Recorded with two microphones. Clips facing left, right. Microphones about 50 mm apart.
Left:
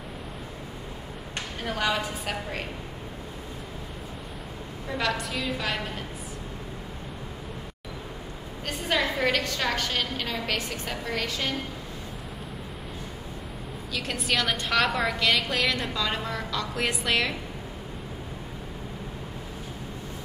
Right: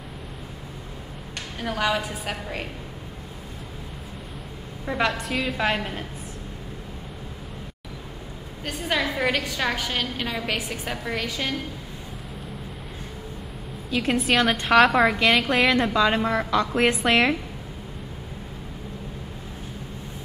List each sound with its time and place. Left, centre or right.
1.6 s a woman's voice: centre
4.8 s a woman's voice: right
5.2 s a woman's voice: centre
8.6 s a woman's voice: centre
13.8 s a woman's voice: right
14.2 s a woman's voice: centre
15.1 s a woman's voice: right